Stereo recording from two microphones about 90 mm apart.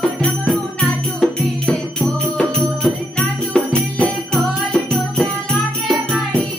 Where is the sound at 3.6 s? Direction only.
15° left (ahead or behind).